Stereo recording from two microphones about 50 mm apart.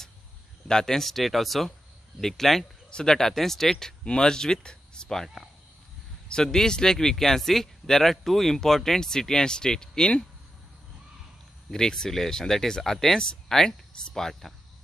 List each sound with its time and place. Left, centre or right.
0.7 s speech: centre
11.7 s speech: centre